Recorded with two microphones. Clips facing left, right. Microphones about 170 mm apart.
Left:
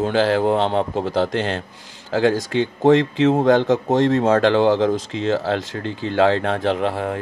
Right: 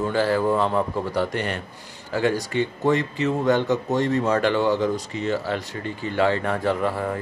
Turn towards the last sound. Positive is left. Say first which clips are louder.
# left 3 dB
turn(degrees=80)